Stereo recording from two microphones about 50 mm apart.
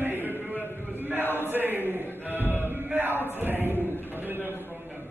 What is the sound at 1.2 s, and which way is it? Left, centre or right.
Chant, left.